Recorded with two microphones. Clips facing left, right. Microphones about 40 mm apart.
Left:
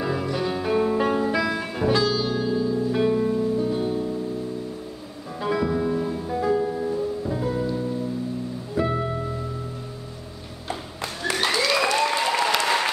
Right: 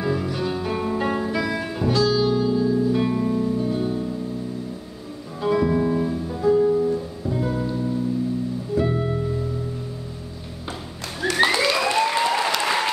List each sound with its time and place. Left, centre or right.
0.0 s music: centre
5.4 s music: centre
5.7 s music: centre
6.1 s music: centre
7.3 s music: centre
8.7 s music: centre
11.3 s applause: centre